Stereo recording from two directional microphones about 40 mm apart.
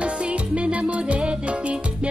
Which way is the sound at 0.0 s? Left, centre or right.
Right.